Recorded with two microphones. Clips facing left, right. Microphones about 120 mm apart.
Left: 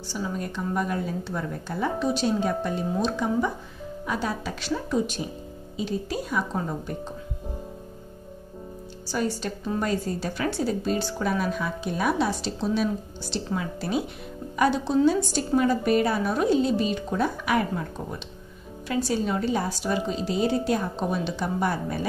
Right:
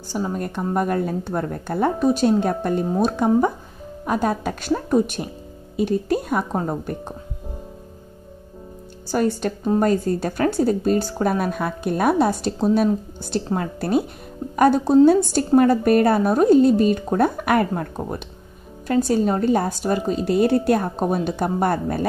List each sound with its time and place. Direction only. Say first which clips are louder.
0.1 s a woman's voice: right 6 dB; 50° right (ahead or behind)
9.1 s a woman's voice: right 7 dB; 55° right (ahead or behind)